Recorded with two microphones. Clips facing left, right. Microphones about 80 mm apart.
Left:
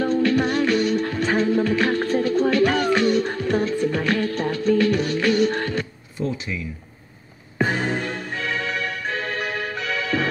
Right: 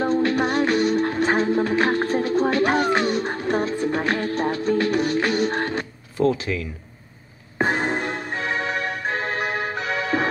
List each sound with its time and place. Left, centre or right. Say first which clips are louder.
0.2 s music: left 1 dB; right
0.6 s music: even; right
0.8 s music: right 2 dB; right
6.2 s a sound: right 6 dB; right
7.5 s music: right 1 dB; right